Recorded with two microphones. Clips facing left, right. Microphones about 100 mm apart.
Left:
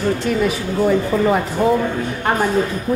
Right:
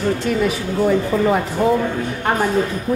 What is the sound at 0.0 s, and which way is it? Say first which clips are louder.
Speech: even; 25° left (ahead or behind).